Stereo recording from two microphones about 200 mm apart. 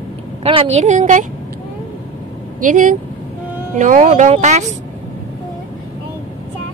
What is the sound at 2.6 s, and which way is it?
Speech, 40° right (ahead or behind).